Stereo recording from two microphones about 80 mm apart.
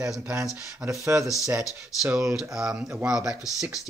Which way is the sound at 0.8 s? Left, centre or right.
Centre.